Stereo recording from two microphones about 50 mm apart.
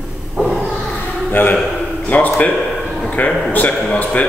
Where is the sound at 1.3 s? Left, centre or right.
Left.